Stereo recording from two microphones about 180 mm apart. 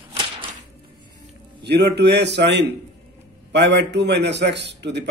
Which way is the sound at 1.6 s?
70° right (ahead or behind).